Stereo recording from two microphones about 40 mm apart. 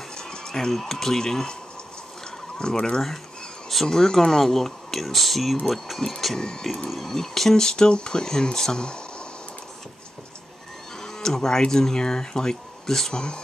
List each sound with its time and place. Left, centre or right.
0.1 s a sound: centre
0.7 s speech: centre
2.6 s speech: left
3.7 s speech: centre
5.9 s speech: centre
11.0 s speech: centre